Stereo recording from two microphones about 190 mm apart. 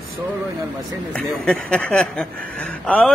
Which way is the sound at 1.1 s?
5° left (ahead or behind).